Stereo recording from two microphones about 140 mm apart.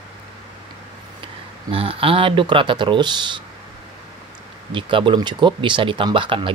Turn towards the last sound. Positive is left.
turn(degrees=-35)  # may be behind; listen again after turning